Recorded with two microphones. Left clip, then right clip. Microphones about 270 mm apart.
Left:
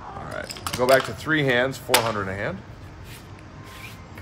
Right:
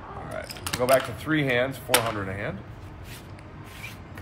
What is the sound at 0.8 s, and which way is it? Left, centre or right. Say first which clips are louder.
Speech: left 3 dB; left.